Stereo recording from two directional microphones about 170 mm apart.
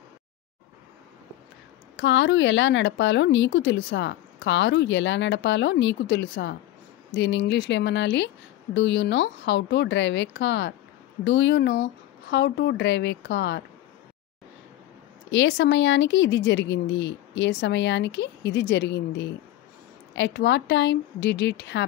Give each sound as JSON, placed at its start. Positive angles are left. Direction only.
{"t": 2.0, "sound": "a woman's voice", "side_deg": 90}
{"t": 15.3, "sound": "a woman's voice", "side_deg": 90}